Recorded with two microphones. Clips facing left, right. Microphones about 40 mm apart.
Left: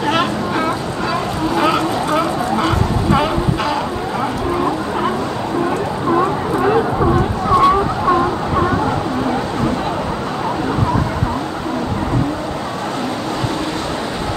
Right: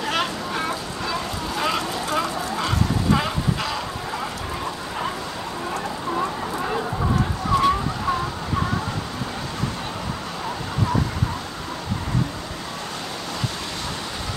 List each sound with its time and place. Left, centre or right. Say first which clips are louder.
0.1 s boat: left 7 dB; centre
1.6 s vehicle: left 7 dB; centre
6.1 s a sound: left 10 dB; left